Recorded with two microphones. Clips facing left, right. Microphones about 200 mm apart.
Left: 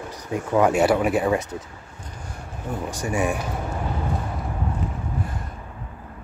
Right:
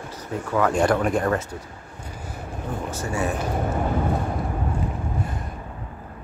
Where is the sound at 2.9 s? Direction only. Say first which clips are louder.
Left 3 dB; 15° left (ahead or behind).